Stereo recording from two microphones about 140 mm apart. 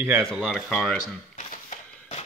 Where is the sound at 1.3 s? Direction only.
60° left (ahead or behind).